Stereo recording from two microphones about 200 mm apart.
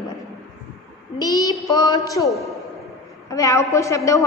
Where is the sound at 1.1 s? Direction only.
20° left (ahead or behind).